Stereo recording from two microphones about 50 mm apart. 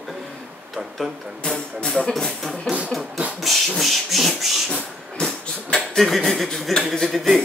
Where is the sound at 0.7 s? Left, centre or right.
Centre.